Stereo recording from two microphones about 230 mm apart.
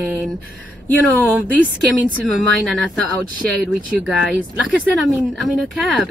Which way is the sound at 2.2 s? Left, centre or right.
Centre.